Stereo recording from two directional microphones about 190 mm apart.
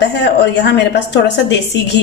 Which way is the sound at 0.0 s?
65° left (ahead or behind).